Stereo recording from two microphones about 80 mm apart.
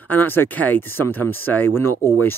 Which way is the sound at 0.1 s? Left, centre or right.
Left.